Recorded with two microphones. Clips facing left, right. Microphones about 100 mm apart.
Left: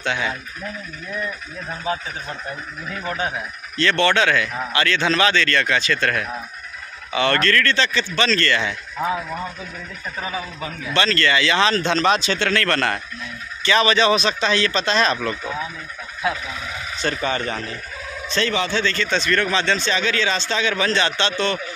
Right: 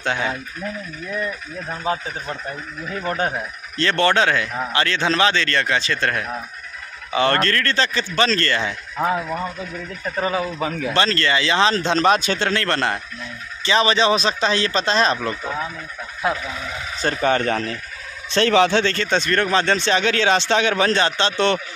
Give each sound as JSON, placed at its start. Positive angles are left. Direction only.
{"t": 0.0, "sound": "speech", "side_deg": -40}
{"t": 3.1, "sound": "a man's voice", "side_deg": -40}
{"t": 10.3, "sound": "a man's voice", "side_deg": -90}
{"t": 10.9, "sound": "speech", "side_deg": -35}
{"t": 12.4, "sound": "a man's voice", "side_deg": -25}
{"t": 13.7, "sound": "speech", "side_deg": -30}
{"t": 17.0, "sound": "speech", "side_deg": -50}
{"t": 18.3, "sound": "speech", "side_deg": -70}
{"t": 19.8, "sound": "speech", "side_deg": -60}
{"t": 21.0, "sound": "speech", "side_deg": -35}